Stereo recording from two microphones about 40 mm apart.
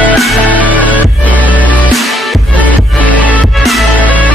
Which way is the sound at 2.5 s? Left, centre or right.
Left.